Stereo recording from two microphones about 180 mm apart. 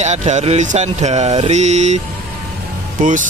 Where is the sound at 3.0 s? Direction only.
45° right (ahead or behind).